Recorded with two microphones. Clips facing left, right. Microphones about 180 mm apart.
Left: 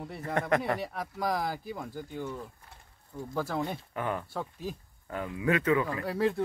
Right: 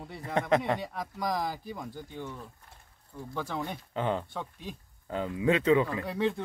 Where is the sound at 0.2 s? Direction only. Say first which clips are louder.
Right 2 dB; 20° right (ahead or behind).